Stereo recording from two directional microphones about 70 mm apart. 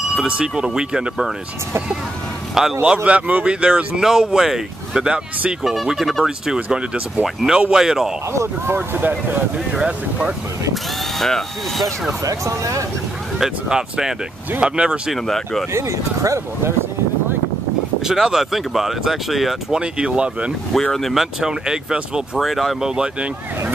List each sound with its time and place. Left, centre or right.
0.1 s speech: centre
2.6 s speech: centre
3.0 s speech: right
8.3 s speech: right
9.7 s speech: centre
10.7 s speech: centre
12.2 s speech: right
13.4 s speech: centre
15.1 s speech: centre
15.7 s speech: right
18.0 s speech: centre
19.8 s speech: centre
20.8 s speech: centre
22.4 s speech: centre